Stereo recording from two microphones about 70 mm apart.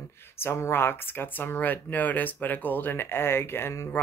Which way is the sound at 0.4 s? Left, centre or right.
Left.